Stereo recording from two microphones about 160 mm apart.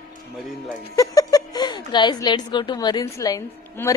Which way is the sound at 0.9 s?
20° left (ahead or behind).